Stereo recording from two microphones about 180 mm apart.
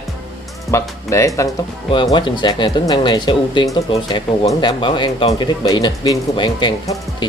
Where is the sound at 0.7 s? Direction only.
15° left (ahead or behind).